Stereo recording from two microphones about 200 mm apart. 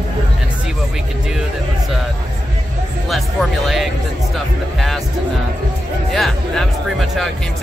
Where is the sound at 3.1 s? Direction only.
Centre (ahead or behind).